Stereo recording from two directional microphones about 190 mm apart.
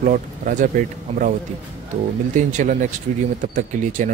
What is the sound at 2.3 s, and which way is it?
Speech, 40° right (ahead or behind).